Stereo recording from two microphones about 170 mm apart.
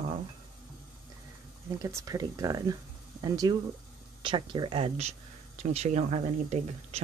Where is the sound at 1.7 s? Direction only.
20° right (ahead or behind); by 7.0 s 40° right (ahead or behind).